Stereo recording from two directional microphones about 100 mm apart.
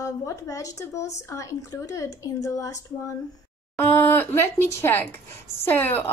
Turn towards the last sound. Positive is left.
turn(degrees=20)  # may be behind; listen again after turning